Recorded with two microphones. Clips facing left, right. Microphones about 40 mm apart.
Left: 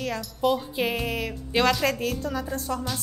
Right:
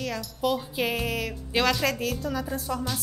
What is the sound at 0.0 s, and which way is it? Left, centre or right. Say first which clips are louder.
Speech: left 3 dB; centre.